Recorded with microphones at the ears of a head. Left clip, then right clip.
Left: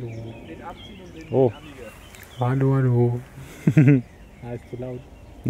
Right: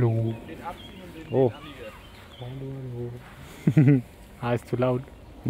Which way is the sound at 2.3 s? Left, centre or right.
Left.